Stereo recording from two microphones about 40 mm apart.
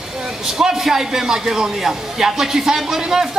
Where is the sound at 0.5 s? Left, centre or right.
Centre.